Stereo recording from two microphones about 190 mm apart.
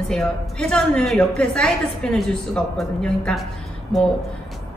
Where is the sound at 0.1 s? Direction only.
5° left (ahead or behind).